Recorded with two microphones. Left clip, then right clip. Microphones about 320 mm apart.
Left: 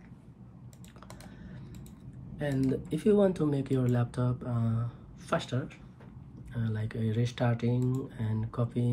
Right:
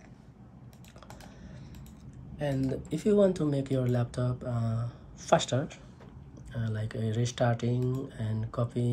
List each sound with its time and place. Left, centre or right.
2.3 s speech: centre